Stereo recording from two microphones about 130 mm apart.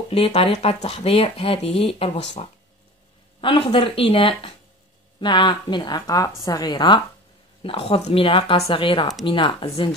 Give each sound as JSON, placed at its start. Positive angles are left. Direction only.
{"t": 0.1, "sound": "speech", "side_deg": 50}
{"t": 3.3, "sound": "a woman's voice", "side_deg": 45}